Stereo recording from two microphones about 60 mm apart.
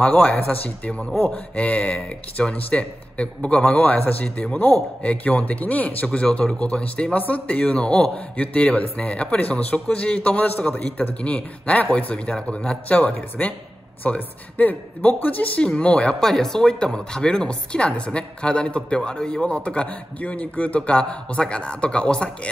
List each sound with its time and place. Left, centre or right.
0.0 s speech: left